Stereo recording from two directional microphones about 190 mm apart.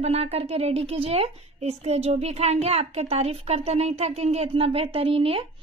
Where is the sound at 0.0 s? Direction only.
35° right (ahead or behind).